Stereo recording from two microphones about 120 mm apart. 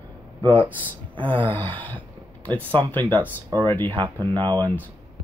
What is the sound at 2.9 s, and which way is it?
Speech, 40° right (ahead or behind).